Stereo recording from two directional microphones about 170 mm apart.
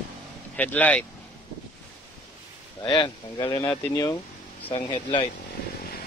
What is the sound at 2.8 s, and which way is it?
Speech, 25° left (ahead or behind).